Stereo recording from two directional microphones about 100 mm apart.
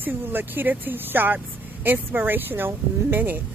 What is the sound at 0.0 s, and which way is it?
Speech, 20° right (ahead or behind).